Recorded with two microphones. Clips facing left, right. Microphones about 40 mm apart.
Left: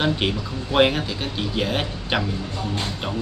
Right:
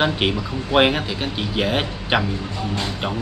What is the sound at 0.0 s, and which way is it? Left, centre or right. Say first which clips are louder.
Speech: right 2 dB; right.